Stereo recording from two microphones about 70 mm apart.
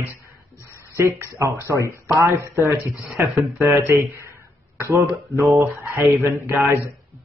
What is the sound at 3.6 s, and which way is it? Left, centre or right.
Speech, right.